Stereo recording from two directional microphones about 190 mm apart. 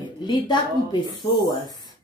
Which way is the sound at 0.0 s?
25° left (ahead or behind).